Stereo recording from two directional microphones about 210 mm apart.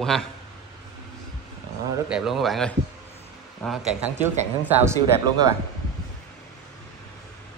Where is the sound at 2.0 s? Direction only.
Centre (ahead or behind).